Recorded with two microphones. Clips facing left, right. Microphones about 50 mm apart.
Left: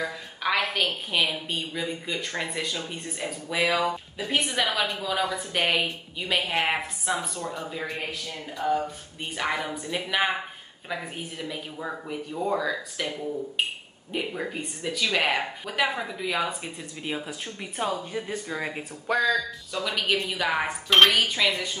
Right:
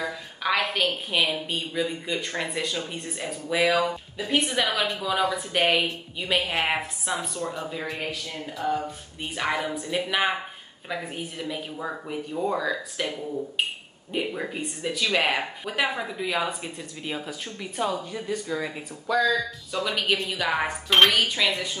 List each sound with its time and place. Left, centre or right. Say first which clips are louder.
0.0 s a sound: even; centre
1.5 s speech: right 2 dB; centre
14.1 s speech: right 1 dB; centre
18.2 s speech: right 3 dB; left
19.0 s speech: right 1 dB; left
19.7 s speech: right 1 dB; centre